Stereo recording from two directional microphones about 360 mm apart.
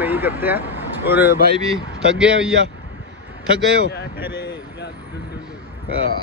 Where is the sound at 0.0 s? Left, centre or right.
Centre.